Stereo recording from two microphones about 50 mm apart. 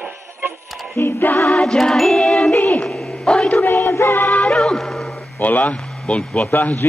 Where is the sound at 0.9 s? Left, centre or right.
Left.